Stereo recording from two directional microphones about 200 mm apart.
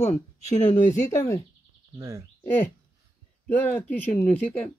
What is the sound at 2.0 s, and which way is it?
Speech, 15° right (ahead or behind).